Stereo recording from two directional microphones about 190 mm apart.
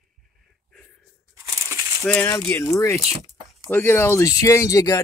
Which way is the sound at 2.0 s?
10° left (ahead or behind).